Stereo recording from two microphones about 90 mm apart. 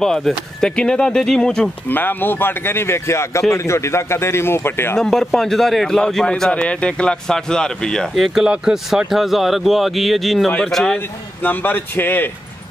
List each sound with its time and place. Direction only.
0.0 s a man's voice: 5° left (ahead or behind)
1.9 s speech: 20° left (ahead or behind)
4.9 s a man's voice: 5° left (ahead or behind)
11.0 s speech: 20° left (ahead or behind)